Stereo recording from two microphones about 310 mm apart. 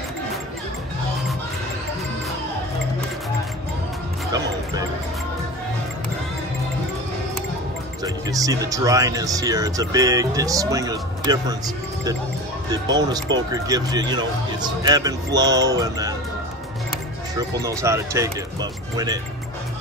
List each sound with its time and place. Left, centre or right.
8.0 s speech: centre
17.4 s speech: centre